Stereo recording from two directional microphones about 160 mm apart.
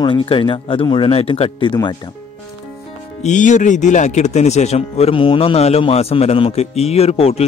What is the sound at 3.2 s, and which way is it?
Speech, 50° left (ahead or behind).